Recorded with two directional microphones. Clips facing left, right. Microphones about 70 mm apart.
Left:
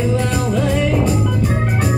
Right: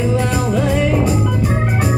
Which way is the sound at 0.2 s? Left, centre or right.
Centre.